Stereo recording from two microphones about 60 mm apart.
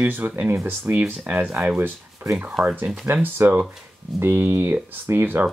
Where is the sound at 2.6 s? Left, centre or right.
Right.